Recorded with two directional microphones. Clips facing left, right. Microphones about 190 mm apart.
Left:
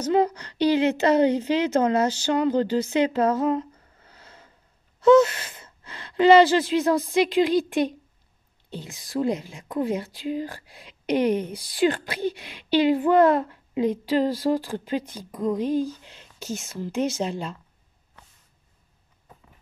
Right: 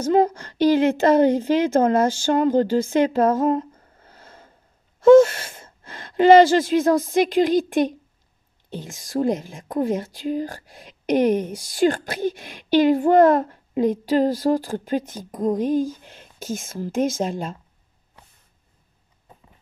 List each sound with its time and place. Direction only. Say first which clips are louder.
0.0 s a woman's voice: right 3 dB; 45° right (ahead or behind)